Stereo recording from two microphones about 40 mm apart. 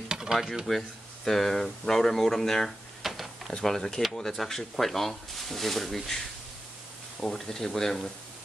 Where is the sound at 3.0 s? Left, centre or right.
Centre.